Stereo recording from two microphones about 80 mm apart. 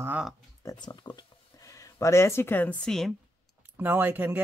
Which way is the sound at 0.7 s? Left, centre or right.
Left.